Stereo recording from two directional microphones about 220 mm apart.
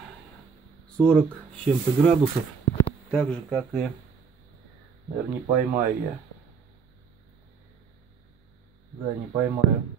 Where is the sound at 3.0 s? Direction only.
Centre (ahead or behind).